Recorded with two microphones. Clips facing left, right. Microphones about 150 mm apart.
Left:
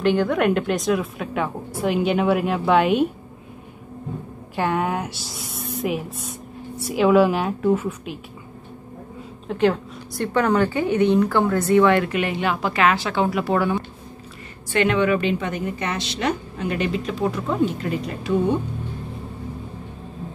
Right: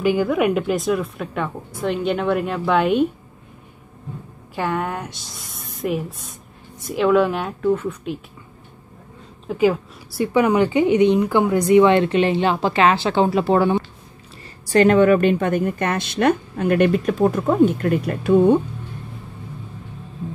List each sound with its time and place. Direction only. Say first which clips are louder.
0.0 s speech: right 1 dB; 5° right (ahead or behind)
4.6 s speech: left 1 dB; 5° left (ahead or behind)
9.5 s speech: right 2 dB; 5° right (ahead or behind); by 13.8 s 30° right (ahead or behind)
14.7 s a woman's voice: right 6 dB; 40° right (ahead or behind)